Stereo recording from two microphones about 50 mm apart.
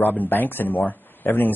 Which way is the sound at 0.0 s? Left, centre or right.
Left.